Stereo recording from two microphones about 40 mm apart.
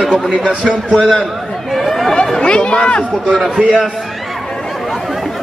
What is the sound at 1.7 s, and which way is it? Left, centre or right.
Chatter, centre.